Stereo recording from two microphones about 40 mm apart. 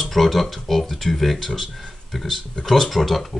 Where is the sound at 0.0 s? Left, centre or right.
Centre.